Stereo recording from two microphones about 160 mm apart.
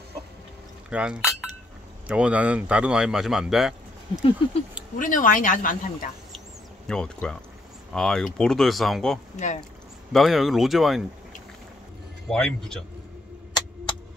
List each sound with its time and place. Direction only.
0.8 s chink: 5° right (ahead or behind)
2.0 s speech: 5° right (ahead or behind)
4.9 s speech: 55° left (ahead or behind)
6.9 s speech: 5° left (ahead or behind)
12.3 s speech: 5° left (ahead or behind)
13.5 s a sound: 25° left (ahead or behind)